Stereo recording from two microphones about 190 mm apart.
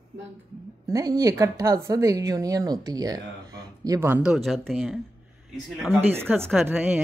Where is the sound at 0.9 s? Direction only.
15° right (ahead or behind); by 5.0 s centre (ahead or behind).